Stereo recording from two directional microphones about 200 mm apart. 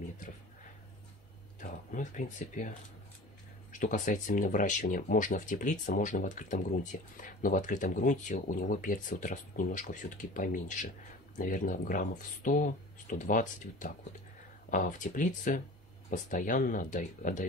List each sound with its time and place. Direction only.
1.6 s speech: 40° left (ahead or behind)
3.7 s speech: 40° left (ahead or behind)